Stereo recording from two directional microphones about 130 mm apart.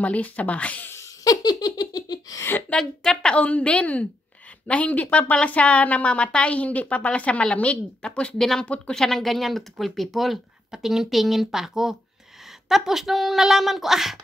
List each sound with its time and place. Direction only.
0.0 s a woman's voice: 10° left (ahead or behind)
1.2 s giggle: 30° left (ahead or behind)
2.4 s a woman's voice: 15° left (ahead or behind)
2.8 s a woman's voice: 5° left (ahead or behind)